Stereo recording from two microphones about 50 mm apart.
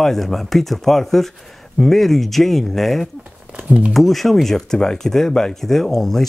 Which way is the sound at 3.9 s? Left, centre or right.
Centre.